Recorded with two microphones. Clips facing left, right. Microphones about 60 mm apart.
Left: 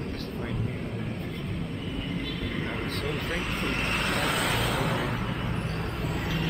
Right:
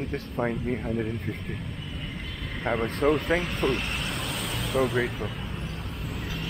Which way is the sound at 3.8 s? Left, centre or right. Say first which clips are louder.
Left 4 dB; left.